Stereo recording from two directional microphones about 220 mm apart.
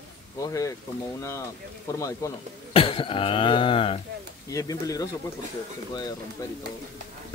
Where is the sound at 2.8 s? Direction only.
25° left (ahead or behind).